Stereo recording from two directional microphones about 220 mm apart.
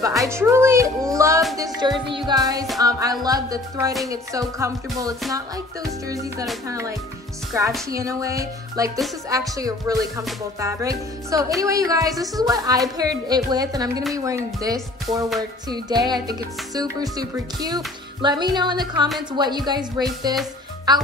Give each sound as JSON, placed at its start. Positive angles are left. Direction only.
{"t": 0.0, "sound": "a woman's voice", "side_deg": -15}
{"t": 7.9, "sound": "a woman's voice", "side_deg": -15}